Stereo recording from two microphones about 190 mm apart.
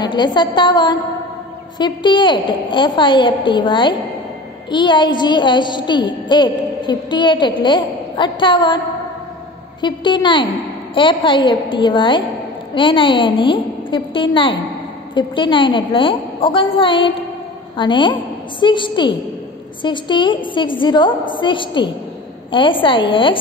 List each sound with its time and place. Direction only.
0.0 s a woman's voice: 20° left (ahead or behind)